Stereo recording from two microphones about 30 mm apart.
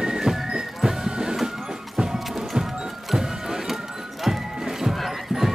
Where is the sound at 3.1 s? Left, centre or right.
Centre.